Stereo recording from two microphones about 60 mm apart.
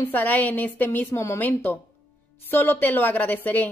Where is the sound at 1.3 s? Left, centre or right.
Left.